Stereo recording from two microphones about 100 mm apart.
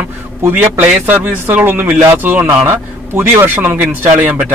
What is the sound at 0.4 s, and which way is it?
A man's voice, 20° right (ahead or behind).